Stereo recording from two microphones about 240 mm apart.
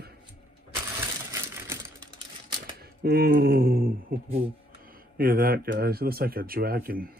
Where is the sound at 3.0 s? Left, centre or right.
Right.